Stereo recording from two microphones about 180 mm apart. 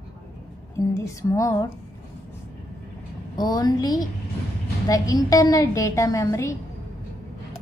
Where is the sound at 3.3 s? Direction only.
20° left (ahead or behind).